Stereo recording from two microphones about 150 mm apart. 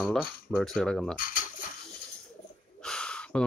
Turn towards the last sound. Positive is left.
turn(degrees=5)  # may be behind; listen again after turning